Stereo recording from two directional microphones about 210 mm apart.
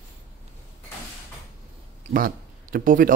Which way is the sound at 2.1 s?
40° right (ahead or behind).